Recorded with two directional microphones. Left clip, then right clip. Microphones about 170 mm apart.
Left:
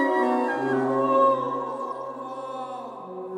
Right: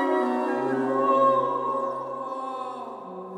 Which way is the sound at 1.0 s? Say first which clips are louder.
Even; centre (ahead or behind).